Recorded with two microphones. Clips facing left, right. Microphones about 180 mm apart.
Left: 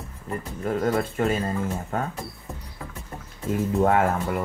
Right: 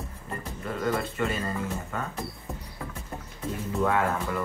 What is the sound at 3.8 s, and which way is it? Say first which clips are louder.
Speech: left 4 dB; 50° left (ahead or behind).